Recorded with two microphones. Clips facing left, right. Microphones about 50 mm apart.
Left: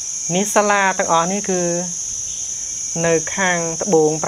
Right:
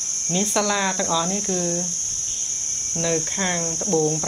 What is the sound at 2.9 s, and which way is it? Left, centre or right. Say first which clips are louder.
Speech: left 7 dB; left.